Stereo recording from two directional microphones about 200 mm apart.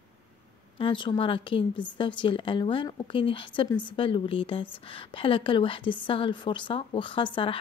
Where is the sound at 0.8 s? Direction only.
25° left (ahead or behind).